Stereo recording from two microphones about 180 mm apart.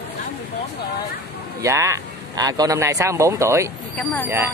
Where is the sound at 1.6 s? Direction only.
15° right (ahead or behind).